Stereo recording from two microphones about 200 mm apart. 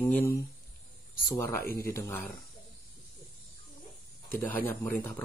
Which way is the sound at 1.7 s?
15° left (ahead or behind).